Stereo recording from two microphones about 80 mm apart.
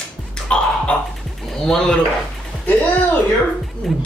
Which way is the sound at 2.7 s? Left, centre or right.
Centre.